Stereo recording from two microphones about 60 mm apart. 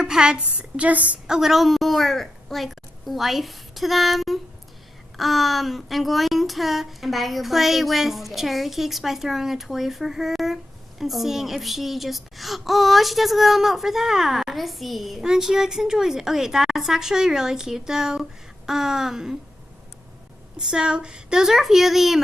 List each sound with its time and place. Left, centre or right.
0.0 s a woman's voice: centre
1.3 s a woman's voice: centre
20.5 s speech: centre